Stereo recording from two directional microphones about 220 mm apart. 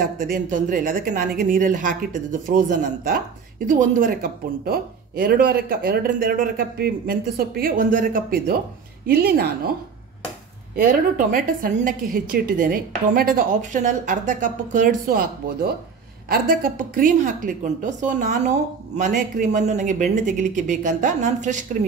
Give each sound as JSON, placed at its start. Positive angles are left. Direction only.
{"t": 0.0, "sound": "speech", "side_deg": -40}
{"t": 10.8, "sound": "speech", "side_deg": -40}